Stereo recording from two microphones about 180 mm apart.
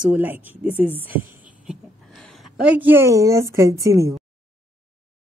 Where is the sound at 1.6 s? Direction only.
Centre (ahead or behind).